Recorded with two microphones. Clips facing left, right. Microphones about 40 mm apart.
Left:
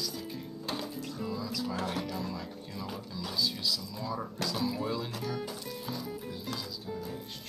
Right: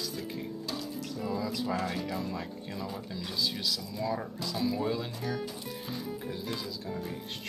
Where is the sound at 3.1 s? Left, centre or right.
Centre.